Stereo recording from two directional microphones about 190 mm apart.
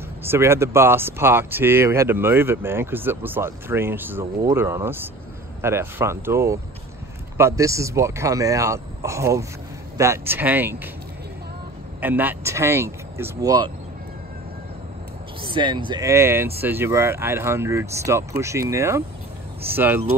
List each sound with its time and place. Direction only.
0.2 s speech: 15° right (ahead or behind)
12.0 s speech: 10° right (ahead or behind)
15.4 s speech: 25° right (ahead or behind); by 20.0 s 10° right (ahead or behind)